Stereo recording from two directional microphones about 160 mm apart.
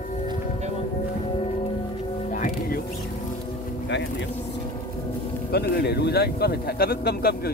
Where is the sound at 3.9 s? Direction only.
90° left.